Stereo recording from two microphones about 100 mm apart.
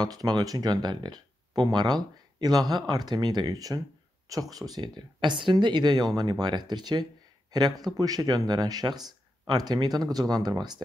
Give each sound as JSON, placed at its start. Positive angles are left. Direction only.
{"t": 0.0, "sound": "speech", "side_deg": -40}